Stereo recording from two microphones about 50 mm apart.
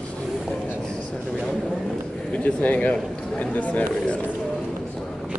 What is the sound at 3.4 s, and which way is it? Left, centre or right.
Chatter, left.